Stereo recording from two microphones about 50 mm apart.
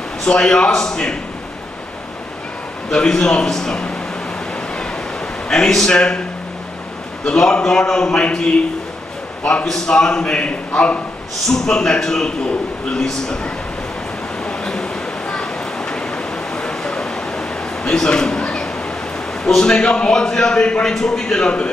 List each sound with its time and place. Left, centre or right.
0.2 s a man's voice: centre
2.9 s a man's voice: centre
5.5 s a man's voice: centre
7.2 s a man's voice: centre
11.4 s a man's voice: centre
14.4 s a sound: centre
19.4 s a man's voice: centre